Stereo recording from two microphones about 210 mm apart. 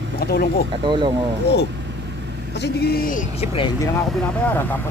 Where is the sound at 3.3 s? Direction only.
30° left (ahead or behind).